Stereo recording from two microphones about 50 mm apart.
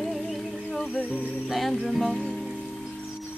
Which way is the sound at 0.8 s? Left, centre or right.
Left.